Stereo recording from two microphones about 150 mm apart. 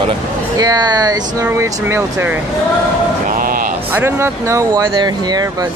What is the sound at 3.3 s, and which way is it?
Speech, 70° right (ahead or behind).